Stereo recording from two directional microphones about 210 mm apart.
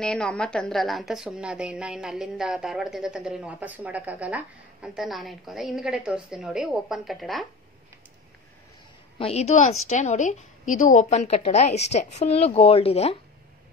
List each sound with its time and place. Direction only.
0.0 s a woman's voice: 5° left (ahead or behind)
9.2 s a woman's voice: 30° left (ahead or behind)